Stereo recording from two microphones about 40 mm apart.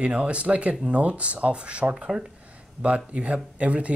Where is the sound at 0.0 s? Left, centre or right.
Right.